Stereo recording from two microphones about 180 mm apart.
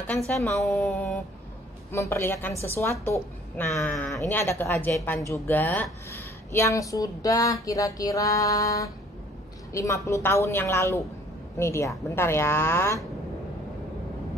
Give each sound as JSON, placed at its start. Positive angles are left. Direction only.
{"t": 0.3, "sound": "a woman's voice", "side_deg": 0}